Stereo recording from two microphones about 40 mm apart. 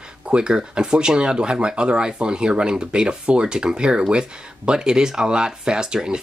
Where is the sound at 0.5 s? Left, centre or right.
Centre.